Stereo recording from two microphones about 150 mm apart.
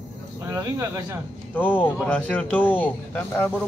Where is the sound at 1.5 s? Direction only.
10° left (ahead or behind).